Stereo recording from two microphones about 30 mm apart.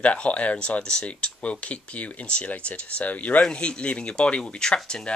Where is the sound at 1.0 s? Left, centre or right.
Left.